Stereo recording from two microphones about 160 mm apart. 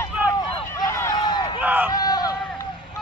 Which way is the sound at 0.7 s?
20° left (ahead or behind).